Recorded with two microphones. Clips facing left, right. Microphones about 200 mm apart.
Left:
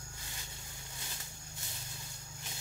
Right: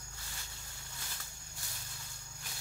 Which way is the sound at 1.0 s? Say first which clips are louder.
Left 1 dB; 20° left (ahead or behind).